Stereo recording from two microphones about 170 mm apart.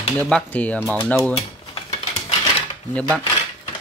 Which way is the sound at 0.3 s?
10° left (ahead or behind).